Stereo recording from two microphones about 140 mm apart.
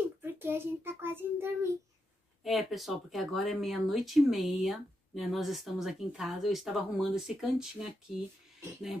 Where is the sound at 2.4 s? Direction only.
Centre (ahead or behind).